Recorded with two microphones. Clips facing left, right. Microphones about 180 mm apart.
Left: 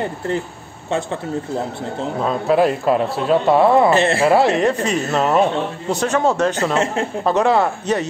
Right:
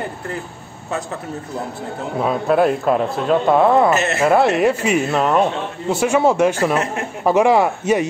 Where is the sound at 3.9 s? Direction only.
30° left (ahead or behind).